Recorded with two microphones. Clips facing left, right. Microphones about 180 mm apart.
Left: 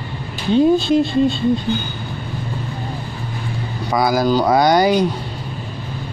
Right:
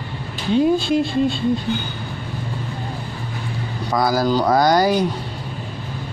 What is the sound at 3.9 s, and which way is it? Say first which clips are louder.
Speech: left 2 dB; 15° left (ahead or behind).